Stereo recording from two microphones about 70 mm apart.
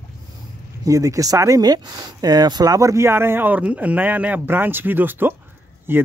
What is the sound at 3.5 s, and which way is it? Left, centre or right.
Speech, centre.